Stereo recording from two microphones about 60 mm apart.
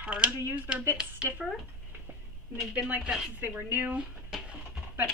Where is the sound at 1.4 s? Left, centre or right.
Centre.